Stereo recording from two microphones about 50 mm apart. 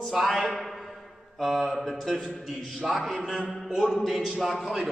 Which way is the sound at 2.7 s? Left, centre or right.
Centre.